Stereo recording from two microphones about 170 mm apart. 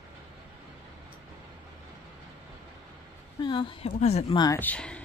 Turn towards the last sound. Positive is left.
turn(degrees=5)  # may be behind; listen again after turning